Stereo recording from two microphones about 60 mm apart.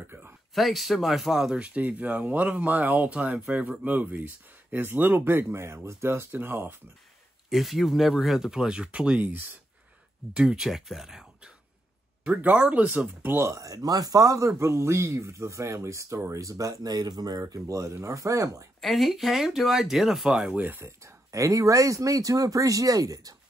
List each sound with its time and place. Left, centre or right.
0.6 s speech: centre
1.6 s speech: right
7.4 s speech: centre; by 9.5 s right
10.3 s speech: centre
12.5 s speech: right
13.4 s speech: right
13.7 s speech: right
14.6 s speech: right
16.3 s speech: right
18.8 s speech: centre
20.2 s speech: centre
20.5 s speech: right
21.0 s speech: right